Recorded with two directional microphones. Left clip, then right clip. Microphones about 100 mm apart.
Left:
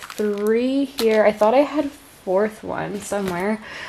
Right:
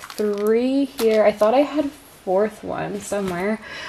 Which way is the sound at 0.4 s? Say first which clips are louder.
Right 1 dB; 15° left (ahead or behind).